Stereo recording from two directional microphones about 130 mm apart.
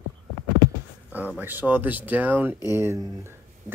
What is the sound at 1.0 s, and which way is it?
Speech, 10° right (ahead or behind).